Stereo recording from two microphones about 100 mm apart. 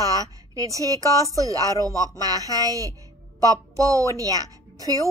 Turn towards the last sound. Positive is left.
turn(degrees=-35)  # may be behind; listen again after turning